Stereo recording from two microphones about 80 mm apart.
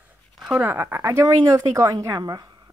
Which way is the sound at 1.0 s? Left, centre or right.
Right.